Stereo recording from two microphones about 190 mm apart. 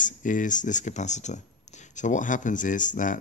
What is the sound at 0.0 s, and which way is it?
Speech, 45° left (ahead or behind).